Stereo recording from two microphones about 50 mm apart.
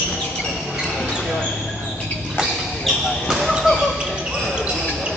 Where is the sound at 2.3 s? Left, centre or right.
Centre.